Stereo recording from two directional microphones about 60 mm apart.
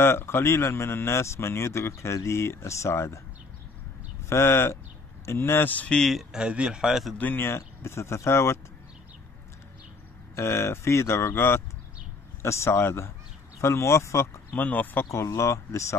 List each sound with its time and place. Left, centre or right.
0.0 s speech: left
4.3 s speech: left
5.7 s speech: left
5.9 s speech: centre
6.3 s a man's voice: centre
7.2 s speech: left
7.4 s speech: left
10.3 s speech: left
14.5 s speech: left
15.0 s speech: left